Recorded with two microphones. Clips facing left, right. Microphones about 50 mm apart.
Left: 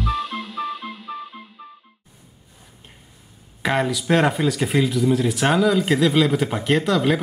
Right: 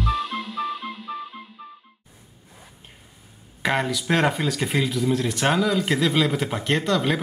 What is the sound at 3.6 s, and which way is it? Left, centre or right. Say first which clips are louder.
Speech: left 2 dB; centre.